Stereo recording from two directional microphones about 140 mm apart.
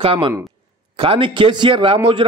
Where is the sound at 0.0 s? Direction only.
40° right (ahead or behind).